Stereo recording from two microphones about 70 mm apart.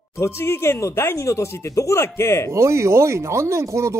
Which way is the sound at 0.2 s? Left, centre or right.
Left.